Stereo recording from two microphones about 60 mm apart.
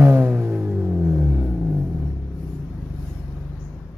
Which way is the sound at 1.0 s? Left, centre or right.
Centre.